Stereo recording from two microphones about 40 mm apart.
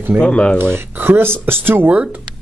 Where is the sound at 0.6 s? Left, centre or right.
Right.